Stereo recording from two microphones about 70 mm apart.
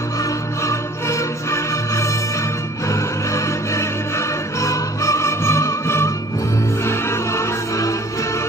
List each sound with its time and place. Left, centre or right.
0.2 s music: left